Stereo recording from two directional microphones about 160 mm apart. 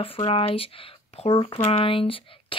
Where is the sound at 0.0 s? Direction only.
35° left (ahead or behind).